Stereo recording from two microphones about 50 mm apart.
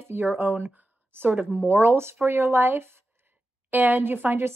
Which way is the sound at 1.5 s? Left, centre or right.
Right.